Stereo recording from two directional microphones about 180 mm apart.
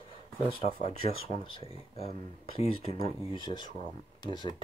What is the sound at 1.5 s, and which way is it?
Speech, 30° left (ahead or behind).